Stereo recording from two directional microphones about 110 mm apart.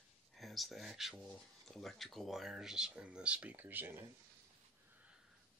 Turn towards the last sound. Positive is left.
turn(degrees=-20)  # may be behind; listen again after turning